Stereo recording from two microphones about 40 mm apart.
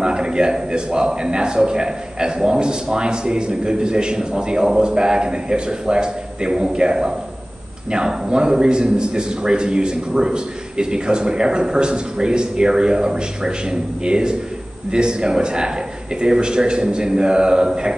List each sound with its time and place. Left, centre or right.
0.0 s a man's voice: right